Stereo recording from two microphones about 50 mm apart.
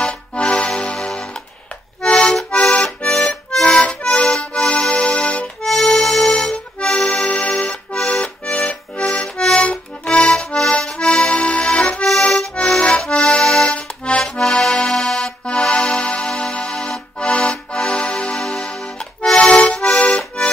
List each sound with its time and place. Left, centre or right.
0.0 s accordion: centre
2.0 s accordion: left
5.7 s music: centre
6.3 s accordion: centre
8.1 s accordion: left
15.6 s music: centre
17.2 s accordion: centre
17.8 s music: left
19.3 s accordion: left